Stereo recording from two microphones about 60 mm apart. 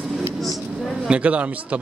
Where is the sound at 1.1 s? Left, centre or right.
Right.